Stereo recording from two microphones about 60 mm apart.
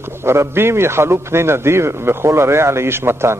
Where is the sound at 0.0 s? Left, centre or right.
Right.